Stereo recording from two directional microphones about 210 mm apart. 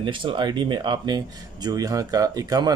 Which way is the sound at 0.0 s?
25° right (ahead or behind).